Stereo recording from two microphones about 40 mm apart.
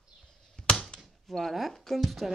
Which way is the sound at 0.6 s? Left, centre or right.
Left.